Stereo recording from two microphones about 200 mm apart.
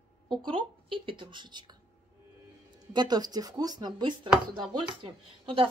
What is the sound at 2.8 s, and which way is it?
Speech, 20° right (ahead or behind).